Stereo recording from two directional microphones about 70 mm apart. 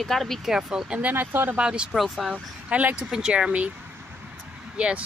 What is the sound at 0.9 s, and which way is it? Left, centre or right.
Speech, right.